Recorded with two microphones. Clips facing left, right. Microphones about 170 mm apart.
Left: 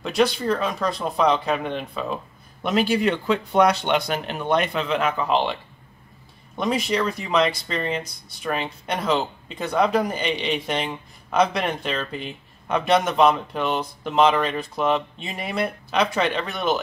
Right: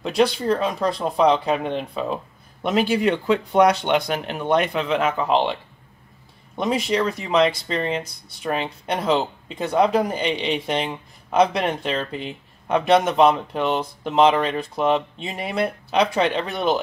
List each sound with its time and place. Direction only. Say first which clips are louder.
0.0 s speech: right 1 dB; 30° right (ahead or behind)